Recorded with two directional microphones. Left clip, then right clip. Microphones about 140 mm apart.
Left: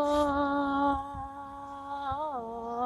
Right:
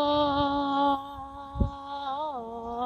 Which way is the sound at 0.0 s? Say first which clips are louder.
Right 2 dB; 5° right (ahead or behind).